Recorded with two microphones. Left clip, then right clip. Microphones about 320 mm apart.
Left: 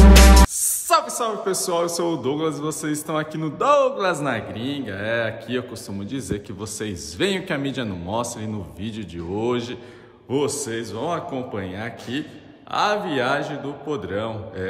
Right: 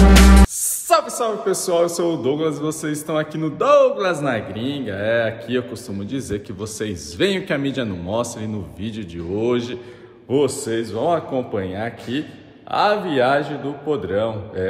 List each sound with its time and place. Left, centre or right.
0.1 s speech: centre